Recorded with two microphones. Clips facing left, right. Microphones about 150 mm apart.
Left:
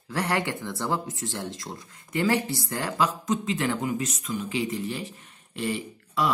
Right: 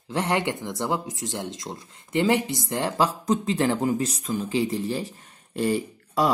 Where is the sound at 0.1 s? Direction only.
20° right (ahead or behind).